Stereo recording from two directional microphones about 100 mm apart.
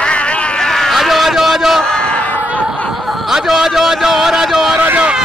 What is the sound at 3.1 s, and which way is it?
A man's voice, 5° right (ahead or behind).